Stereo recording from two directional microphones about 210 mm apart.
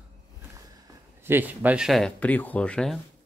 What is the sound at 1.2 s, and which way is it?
Speech, 10° right (ahead or behind).